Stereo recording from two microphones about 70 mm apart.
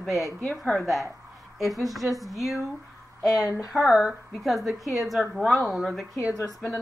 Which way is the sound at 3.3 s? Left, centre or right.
Left.